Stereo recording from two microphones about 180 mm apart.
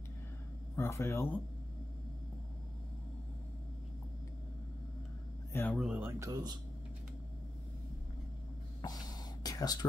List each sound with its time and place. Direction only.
0.7 s speech: 15° left (ahead or behind)
5.5 s speech: 10° left (ahead or behind)
5.8 s speech: 10° right (ahead or behind)
8.8 s a sound: 20° left (ahead or behind)